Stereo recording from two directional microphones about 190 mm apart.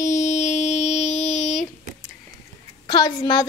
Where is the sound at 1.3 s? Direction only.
Centre (ahead or behind).